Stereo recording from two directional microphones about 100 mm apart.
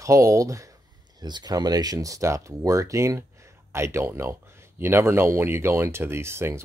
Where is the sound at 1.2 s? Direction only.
45° right (ahead or behind).